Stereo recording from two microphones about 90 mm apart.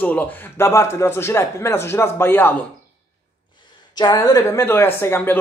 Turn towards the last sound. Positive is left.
turn(degrees=25)  # may be behind; listen again after turning